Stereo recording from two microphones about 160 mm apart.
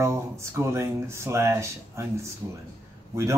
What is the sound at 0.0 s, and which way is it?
Speech, 15° right (ahead or behind).